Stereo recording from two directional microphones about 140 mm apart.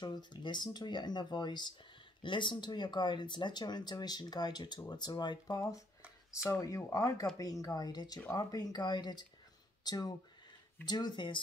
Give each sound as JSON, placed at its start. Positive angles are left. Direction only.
{"t": 0.0, "sound": "speech", "side_deg": 30}